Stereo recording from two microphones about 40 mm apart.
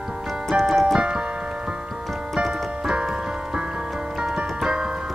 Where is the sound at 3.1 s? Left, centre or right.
Right.